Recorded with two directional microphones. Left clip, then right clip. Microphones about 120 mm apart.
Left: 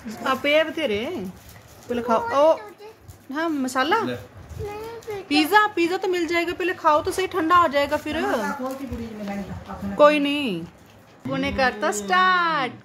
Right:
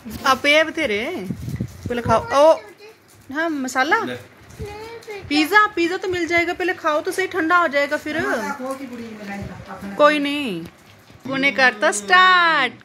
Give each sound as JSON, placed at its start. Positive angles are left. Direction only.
{"t": 0.2, "sound": "speech", "side_deg": -15}
{"t": 0.7, "sound": "speech", "side_deg": 0}
{"t": 5.3, "sound": "speech", "side_deg": 0}
{"t": 5.8, "sound": "speech", "side_deg": 15}
{"t": 9.9, "sound": "speech", "side_deg": 5}
{"t": 11.2, "sound": "a woman's voice", "side_deg": -20}